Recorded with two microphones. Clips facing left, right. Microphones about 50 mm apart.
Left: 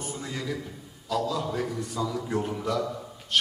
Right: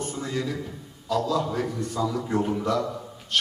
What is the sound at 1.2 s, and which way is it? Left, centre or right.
A man's voice, centre.